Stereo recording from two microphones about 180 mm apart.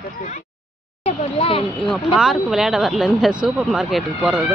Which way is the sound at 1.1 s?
30° left (ahead or behind).